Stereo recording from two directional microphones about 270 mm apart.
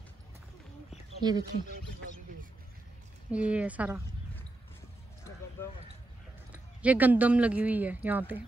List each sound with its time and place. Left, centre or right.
1.2 s speech: centre
3.3 s speech: centre
6.5 s speech: centre